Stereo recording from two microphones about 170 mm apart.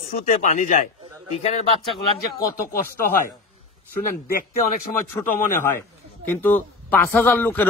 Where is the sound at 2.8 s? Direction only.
60° left (ahead or behind).